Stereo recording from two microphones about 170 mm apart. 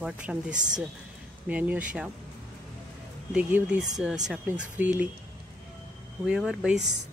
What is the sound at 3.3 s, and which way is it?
Speech, 5° right (ahead or behind).